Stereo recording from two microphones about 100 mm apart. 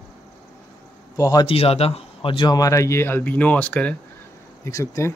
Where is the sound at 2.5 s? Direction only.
35° left (ahead or behind); by 3.9 s 15° left (ahead or behind).